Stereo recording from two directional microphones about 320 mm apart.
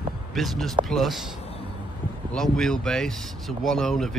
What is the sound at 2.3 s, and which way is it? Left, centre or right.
Speech, centre.